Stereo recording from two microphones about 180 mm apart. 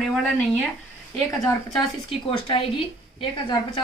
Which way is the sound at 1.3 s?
20° left (ahead or behind).